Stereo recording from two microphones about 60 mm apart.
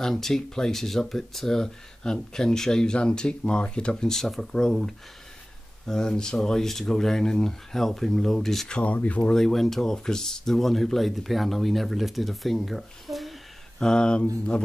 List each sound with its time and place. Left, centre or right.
0.0 s speech: centre
8.7 s speech: left
9.3 s speech: centre
13.7 s speech: centre